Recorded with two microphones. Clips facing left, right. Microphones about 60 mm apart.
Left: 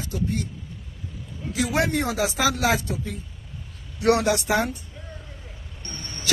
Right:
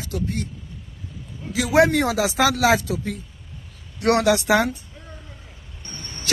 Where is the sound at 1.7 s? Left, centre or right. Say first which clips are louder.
Right 8 dB; right.